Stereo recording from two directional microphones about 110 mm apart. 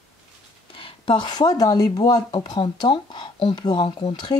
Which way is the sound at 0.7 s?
50° left (ahead or behind).